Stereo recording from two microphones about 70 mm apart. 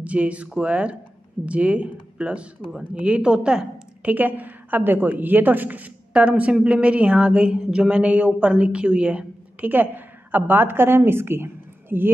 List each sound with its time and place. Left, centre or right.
0.0 s a woman's voice: centre
4.0 s a woman's voice: right